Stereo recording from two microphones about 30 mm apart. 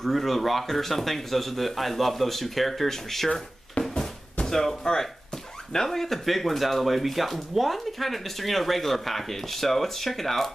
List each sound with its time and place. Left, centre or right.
0.0 s speech: centre
3.8 s a sound: left
4.5 s speech: centre